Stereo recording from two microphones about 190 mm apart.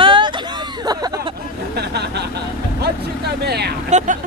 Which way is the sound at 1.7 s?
60° right (ahead or behind).